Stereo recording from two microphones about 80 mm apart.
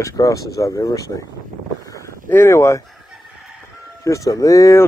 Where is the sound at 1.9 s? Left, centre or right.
Left.